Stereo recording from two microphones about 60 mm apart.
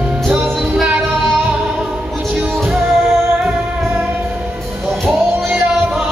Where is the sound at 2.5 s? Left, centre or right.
Centre.